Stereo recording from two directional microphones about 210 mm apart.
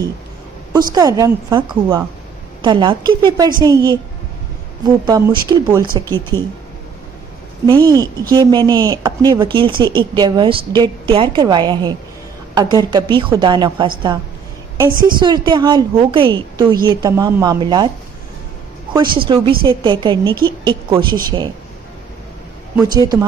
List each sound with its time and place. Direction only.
0.7 s speech: 20° right (ahead or behind)
2.6 s a woman's voice: 20° right (ahead or behind)
6.0 s speech: 10° left (ahead or behind)
7.6 s speech: 20° right (ahead or behind)
14.9 s a woman's voice: 40° right (ahead or behind)
15.1 s speech: 20° right (ahead or behind)
18.9 s speech: 25° right (ahead or behind)